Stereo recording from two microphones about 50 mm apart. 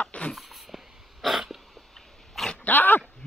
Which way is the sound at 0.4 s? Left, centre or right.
Centre.